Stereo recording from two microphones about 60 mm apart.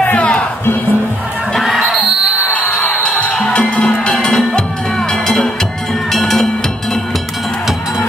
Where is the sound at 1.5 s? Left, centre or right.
Centre.